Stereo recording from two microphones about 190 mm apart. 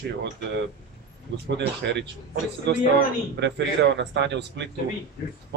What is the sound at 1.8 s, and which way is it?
A man's voice, 60° right (ahead or behind).